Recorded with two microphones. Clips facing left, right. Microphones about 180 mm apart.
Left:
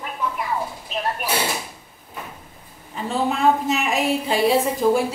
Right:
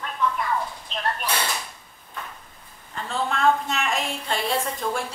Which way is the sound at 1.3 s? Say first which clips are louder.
Left 4 dB; 25° left (ahead or behind).